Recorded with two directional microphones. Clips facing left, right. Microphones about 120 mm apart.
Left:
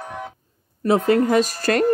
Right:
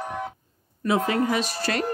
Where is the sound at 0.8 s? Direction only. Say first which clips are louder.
Left 6 dB; 40° left (ahead or behind).